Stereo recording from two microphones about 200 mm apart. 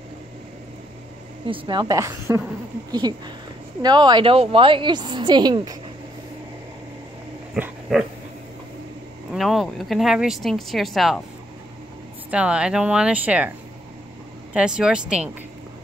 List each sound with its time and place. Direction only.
1.5 s a woman's voice: 20° right (ahead or behind)
7.5 s dog: 5° right (ahead or behind)
9.3 s speech: centre (ahead or behind)
12.3 s speech: 5° right (ahead or behind)
14.5 s speech: 5° right (ahead or behind)